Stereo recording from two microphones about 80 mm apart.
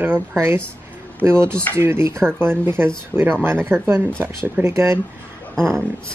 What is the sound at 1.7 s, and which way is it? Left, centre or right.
Speech, right.